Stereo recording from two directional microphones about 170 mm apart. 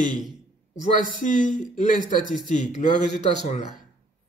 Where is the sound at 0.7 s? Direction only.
45° left (ahead or behind).